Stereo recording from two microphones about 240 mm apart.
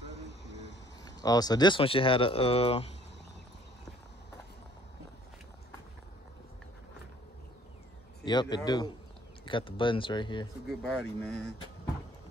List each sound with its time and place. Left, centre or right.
0.0 s vehicle: left
1.0 s speech: centre
8.3 s speech: centre
10.7 s speech: centre